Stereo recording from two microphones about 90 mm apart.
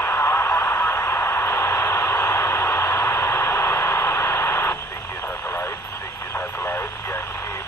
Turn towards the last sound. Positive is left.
turn(degrees=25)  # may be behind; listen again after turning